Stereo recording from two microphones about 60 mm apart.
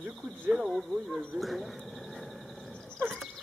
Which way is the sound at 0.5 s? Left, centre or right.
Centre.